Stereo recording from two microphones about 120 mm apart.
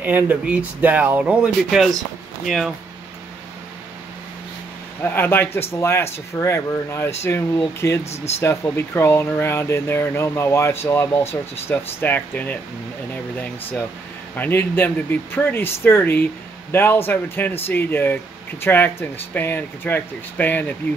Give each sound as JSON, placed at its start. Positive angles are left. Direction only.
{"t": 0.0, "sound": "speech", "side_deg": -15}
{"t": 5.0, "sound": "speech", "side_deg": 15}
{"t": 8.0, "sound": "speech", "side_deg": 65}
{"t": 8.4, "sound": "speech", "side_deg": 25}